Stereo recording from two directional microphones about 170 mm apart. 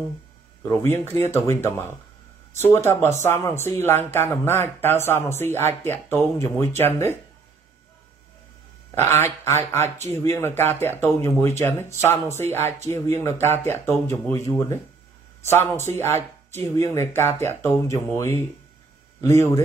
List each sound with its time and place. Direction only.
0.7 s speech: 15° left (ahead or behind)
8.9 s speech: 15° left (ahead or behind)